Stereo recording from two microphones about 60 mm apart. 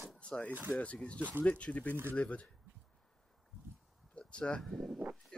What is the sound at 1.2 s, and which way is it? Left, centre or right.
Speech, right.